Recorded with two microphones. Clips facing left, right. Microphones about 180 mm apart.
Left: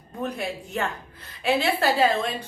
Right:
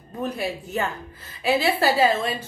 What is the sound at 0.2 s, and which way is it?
Speech, 5° right (ahead or behind).